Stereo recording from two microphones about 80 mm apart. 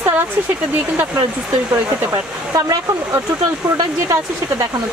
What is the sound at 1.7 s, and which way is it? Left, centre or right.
Speech, right.